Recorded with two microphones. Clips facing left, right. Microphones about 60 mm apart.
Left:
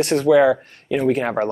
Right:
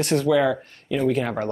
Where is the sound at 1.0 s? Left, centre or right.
Left.